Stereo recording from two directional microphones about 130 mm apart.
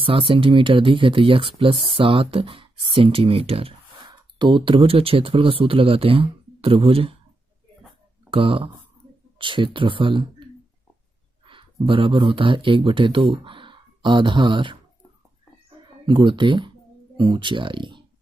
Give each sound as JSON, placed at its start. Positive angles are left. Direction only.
{"t": 0.0, "sound": "speech", "side_deg": -45}
{"t": 8.3, "sound": "speech", "side_deg": -45}
{"t": 16.1, "sound": "speech", "side_deg": -35}